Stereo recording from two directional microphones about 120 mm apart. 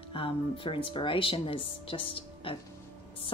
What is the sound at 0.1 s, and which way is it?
Speech, 45° left (ahead or behind).